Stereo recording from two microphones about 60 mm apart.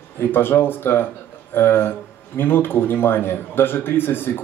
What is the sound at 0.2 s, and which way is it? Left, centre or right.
Speech, left.